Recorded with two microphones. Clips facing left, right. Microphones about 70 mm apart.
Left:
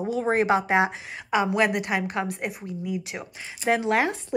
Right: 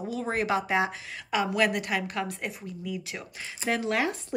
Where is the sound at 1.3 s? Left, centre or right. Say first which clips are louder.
Left 3 dB; centre.